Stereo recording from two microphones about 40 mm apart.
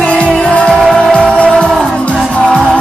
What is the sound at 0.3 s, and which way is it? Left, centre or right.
Music, centre.